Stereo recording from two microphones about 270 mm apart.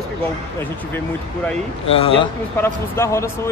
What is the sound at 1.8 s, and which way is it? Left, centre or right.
Speech, left.